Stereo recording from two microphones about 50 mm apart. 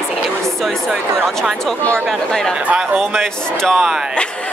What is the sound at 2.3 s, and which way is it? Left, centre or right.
A woman's voice, centre.